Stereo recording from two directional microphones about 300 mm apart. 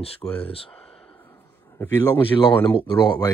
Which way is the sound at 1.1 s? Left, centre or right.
Centre.